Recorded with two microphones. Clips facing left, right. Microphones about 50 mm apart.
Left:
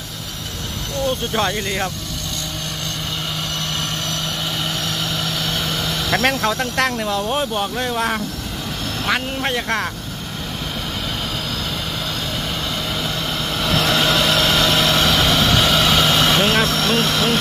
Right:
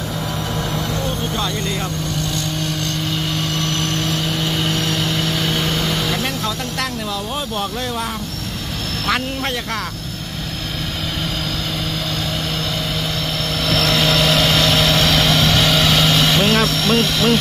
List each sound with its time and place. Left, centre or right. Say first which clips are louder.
4.1 s vehicle: right 4 dB; centre
6.8 s speech: left 5 dB; left
7.5 s speech: left 1 dB; centre
9.0 s speech: even; centre
13.6 s vehicle: even; centre
16.6 s speech: right 1 dB; left